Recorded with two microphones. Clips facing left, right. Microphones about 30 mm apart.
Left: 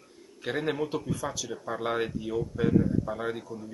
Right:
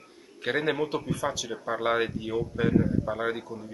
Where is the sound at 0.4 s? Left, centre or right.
Right.